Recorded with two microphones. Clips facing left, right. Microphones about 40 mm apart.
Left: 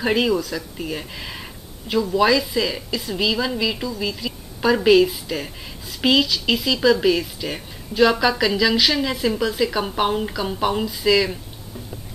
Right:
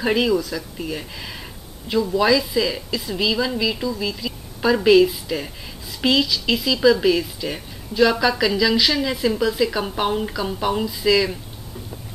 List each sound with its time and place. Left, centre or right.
0.0 s a woman's voice: centre
7.9 s speech: centre
8.2 s a woman's voice: centre